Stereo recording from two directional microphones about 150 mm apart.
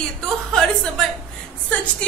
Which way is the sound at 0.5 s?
5° left (ahead or behind).